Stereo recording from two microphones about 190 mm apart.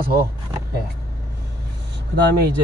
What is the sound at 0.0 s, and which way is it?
Speech, 55° right (ahead or behind).